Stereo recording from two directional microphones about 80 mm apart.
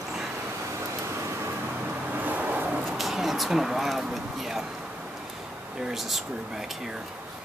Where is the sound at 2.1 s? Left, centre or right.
Right.